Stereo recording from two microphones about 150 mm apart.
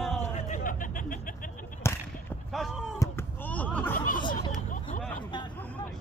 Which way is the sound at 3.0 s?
15° left (ahead or behind).